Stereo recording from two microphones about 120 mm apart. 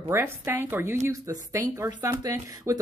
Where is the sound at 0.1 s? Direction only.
20° right (ahead or behind).